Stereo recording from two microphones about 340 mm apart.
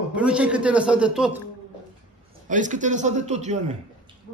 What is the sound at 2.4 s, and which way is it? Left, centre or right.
A man's voice, right.